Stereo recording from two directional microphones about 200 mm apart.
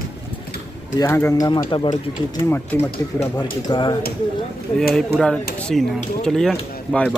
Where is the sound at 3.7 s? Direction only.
25° left (ahead or behind).